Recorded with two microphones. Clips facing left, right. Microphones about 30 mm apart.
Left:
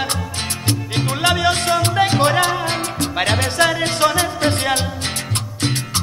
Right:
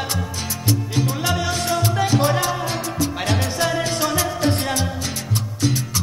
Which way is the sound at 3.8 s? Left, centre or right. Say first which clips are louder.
Left 4 dB; left.